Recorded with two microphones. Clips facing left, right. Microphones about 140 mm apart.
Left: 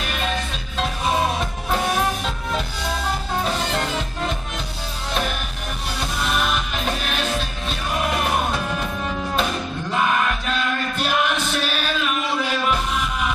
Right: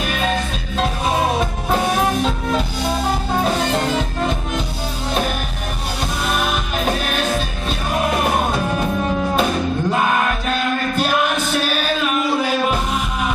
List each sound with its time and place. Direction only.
0.0 s music: 45° right (ahead or behind)
6.5 s music: 40° right (ahead or behind)